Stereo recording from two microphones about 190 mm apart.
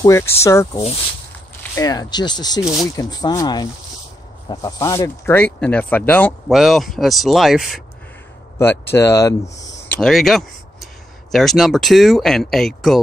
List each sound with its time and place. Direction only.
0.0 s speech: 15° left (ahead or behind)
6.5 s speech: centre (ahead or behind)
8.5 s speech: 15° left (ahead or behind)
9.8 s a sound: centre (ahead or behind)
11.3 s speech: centre (ahead or behind)